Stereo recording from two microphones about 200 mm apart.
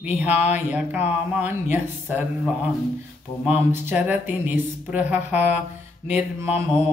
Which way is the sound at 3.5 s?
10° right (ahead or behind).